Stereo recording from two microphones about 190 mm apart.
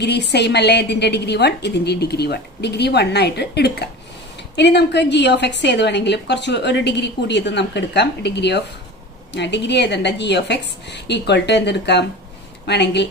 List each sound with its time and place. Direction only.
0.0 s a woman's voice: 60° left (ahead or behind)